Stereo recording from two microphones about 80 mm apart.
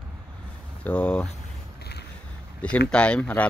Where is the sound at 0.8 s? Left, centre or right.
Centre.